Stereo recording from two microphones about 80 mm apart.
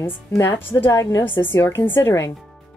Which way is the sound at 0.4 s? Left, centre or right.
Left.